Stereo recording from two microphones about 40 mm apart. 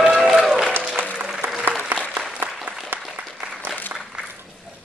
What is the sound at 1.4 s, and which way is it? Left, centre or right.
Applause, right.